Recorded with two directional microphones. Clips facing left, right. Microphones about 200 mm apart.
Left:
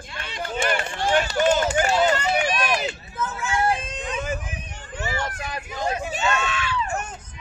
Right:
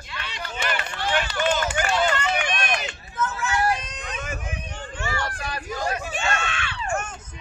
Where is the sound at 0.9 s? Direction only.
45° left (ahead or behind).